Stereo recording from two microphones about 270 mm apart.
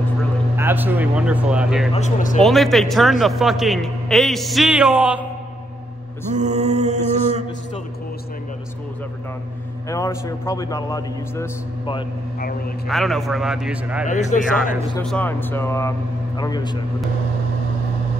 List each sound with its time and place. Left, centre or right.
0.6 s a man's voice: centre
2.0 s speech: left
2.4 s a man's voice: centre
6.3 s mantra: right
9.8 s a man's voice: centre
12.4 s a man's voice: left
12.8 s a man's voice: centre
14.0 s speech: left
15.0 s a man's voice: centre